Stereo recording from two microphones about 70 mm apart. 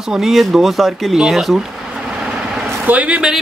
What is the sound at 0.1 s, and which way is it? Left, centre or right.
Speech, centre.